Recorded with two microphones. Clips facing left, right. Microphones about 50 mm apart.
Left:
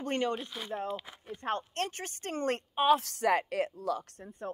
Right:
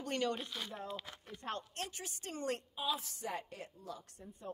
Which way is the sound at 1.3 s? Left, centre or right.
Left.